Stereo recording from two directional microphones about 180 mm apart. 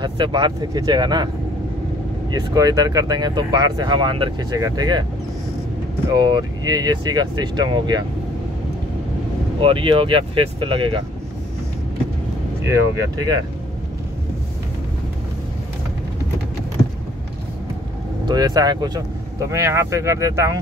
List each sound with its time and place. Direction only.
0.0 s speech: 25° right (ahead or behind)
2.3 s speech: 20° right (ahead or behind)
6.0 s speech: 20° right (ahead or behind)
9.6 s speech: 30° right (ahead or behind)
12.6 s speech: 20° right (ahead or behind)
18.2 s speech: 20° right (ahead or behind)